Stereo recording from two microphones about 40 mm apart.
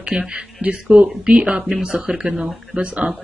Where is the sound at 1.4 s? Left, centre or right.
Right.